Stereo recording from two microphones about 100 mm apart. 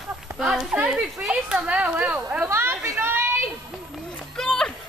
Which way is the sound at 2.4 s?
25° right (ahead or behind).